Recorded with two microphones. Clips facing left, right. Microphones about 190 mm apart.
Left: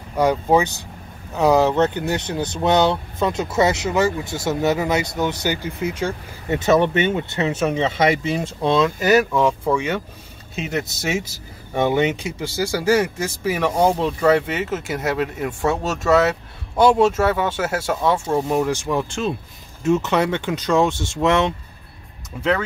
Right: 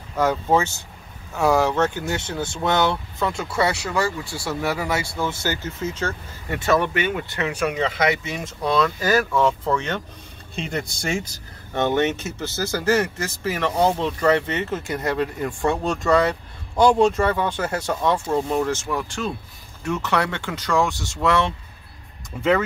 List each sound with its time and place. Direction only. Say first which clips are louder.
0.1 s speech: left 3 dB; 15° left (ahead or behind)
22.3 s speech: even; centre (ahead or behind)